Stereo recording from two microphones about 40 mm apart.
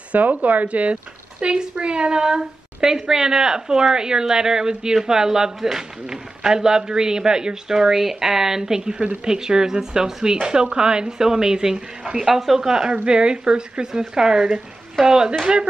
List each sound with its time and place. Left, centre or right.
0.1 s speech: right
1.4 s a woman's voice: right
12.3 s a woman's voice: centre; by 15.7 s right